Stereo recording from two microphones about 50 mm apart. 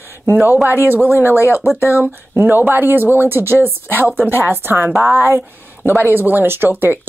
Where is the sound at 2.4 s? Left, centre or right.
Right.